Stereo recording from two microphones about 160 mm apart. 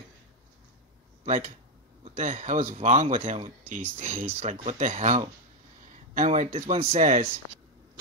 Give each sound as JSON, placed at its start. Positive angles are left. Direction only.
{"t": 1.2, "sound": "speech", "side_deg": -45}